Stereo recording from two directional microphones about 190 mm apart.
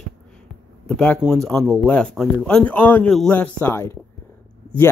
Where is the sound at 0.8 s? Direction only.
5° left (ahead or behind).